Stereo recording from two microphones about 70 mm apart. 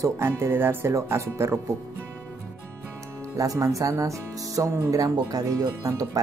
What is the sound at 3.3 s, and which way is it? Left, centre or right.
Speech, right.